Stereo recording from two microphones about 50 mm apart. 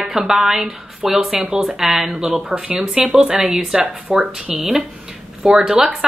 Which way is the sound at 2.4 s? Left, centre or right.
Centre.